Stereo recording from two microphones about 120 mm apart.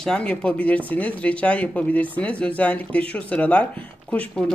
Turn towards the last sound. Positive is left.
turn(degrees=10)  # may be behind; listen again after turning